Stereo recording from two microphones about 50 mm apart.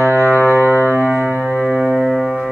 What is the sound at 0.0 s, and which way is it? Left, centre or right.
Music, right.